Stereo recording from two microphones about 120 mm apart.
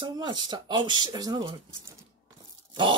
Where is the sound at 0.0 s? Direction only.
40° right (ahead or behind).